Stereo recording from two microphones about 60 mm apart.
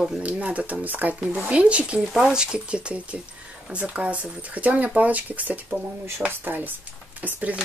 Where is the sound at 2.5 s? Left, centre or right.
Centre.